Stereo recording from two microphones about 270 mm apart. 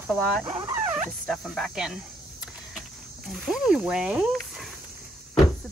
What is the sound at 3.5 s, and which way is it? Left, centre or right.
Speech, centre.